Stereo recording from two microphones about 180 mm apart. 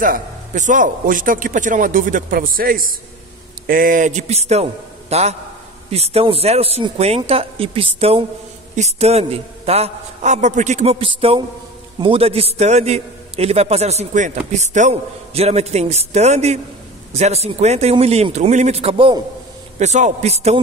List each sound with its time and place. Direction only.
0.0 s a man's voice: 45° right (ahead or behind); by 19.2 s 30° right (ahead or behind)
19.8 s a man's voice: 40° right (ahead or behind)